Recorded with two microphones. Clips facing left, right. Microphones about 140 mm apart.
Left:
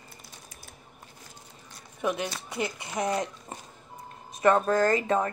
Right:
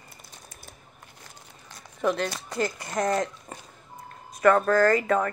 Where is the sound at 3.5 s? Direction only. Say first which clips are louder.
Even; 15° left (ahead or behind).